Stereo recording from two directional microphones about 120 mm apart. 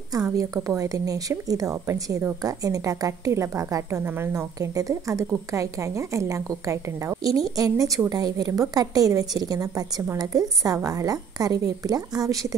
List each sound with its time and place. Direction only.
0.4 s a woman's voice: 25° right (ahead or behind)